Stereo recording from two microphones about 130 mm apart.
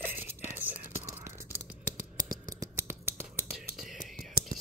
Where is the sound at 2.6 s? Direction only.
20° right (ahead or behind).